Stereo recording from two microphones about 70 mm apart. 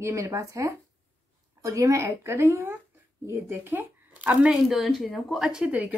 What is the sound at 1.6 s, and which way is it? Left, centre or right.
A woman's voice, right.